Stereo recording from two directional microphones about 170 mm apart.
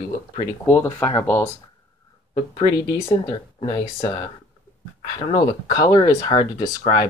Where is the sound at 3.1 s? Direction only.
25° left (ahead or behind).